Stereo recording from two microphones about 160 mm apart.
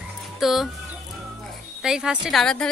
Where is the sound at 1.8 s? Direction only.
5° right (ahead or behind).